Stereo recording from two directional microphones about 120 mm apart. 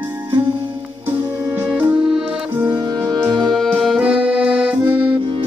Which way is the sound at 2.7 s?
35° right (ahead or behind).